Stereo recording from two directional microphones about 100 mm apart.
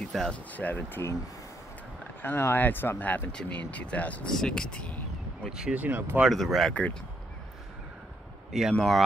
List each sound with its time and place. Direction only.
0.0 s speech: 5° left (ahead or behind)
0.5 s speech: 15° left (ahead or behind)
2.2 s speech: 20° left (ahead or behind)
5.5 s speech: 10° right (ahead or behind)
6.2 s speech: centre (ahead or behind)
6.7 s speech: 15° left (ahead or behind)
8.7 s speech: centre (ahead or behind)